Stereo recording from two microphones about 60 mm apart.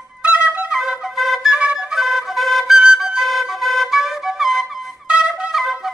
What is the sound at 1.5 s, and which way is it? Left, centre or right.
Flute, centre.